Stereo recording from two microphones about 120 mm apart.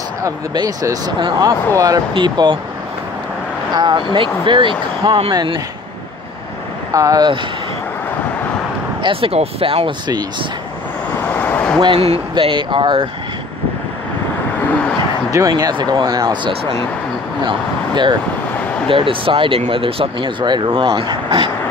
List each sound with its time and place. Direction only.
0.2 s speech: 30° right (ahead or behind)
3.7 s speech: 40° right (ahead or behind)
6.9 s speech: 30° right (ahead or behind)
9.0 s speech: 50° right (ahead or behind)
11.2 s vehicle: 15° left (ahead or behind)
11.8 s speech: 50° right (ahead or behind)
15.3 s speech: 30° right (ahead or behind)